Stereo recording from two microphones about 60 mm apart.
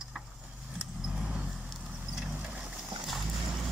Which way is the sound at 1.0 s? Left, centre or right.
Centre.